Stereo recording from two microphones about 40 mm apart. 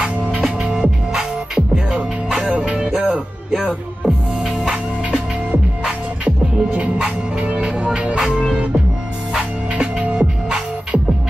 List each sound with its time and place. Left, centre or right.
0.0 s music: centre
2.5 s music: right
4.0 s music: centre
6.2 s music: right
9.3 s music: right